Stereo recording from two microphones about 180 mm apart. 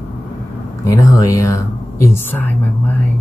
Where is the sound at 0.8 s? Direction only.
20° left (ahead or behind).